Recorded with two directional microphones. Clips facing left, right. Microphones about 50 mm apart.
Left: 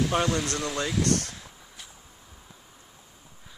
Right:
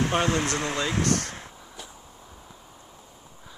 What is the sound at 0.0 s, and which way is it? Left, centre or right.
Speech, right.